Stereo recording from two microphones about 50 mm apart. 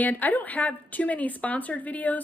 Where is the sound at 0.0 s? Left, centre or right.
Left.